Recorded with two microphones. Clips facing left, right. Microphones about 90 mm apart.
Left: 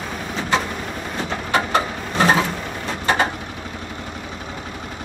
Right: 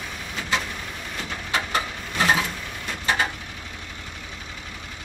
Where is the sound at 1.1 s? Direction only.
45° left (ahead or behind).